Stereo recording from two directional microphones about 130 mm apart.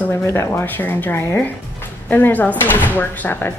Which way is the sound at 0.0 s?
20° left (ahead or behind).